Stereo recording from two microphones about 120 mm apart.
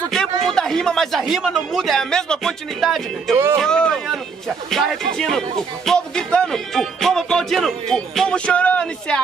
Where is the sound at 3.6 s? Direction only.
5° left (ahead or behind).